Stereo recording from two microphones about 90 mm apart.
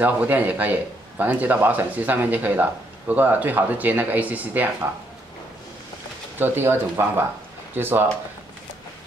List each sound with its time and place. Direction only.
0.0 s speech: 15° right (ahead or behind)
6.3 s speech: 25° right (ahead or behind)